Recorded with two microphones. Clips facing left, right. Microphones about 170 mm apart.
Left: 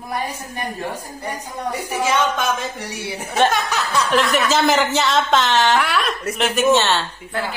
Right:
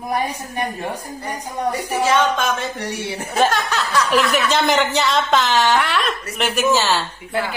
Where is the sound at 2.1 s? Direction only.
15° left (ahead or behind).